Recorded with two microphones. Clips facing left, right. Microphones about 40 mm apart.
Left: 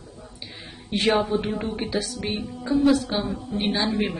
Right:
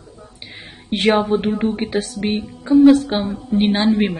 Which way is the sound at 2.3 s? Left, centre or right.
Right.